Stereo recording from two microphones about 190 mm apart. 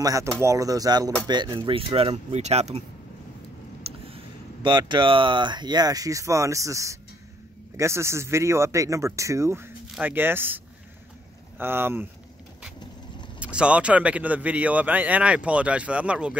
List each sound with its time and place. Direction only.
0.0 s a man's voice: 15° right (ahead or behind); by 2.8 s 35° right (ahead or behind)
3.9 s a sound: 30° right (ahead or behind)
4.6 s a man's voice: 25° right (ahead or behind)
13.4 s a man's voice: 5° right (ahead or behind)